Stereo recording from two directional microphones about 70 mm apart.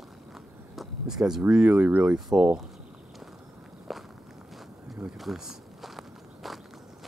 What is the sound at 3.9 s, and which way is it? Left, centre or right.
Walk, centre.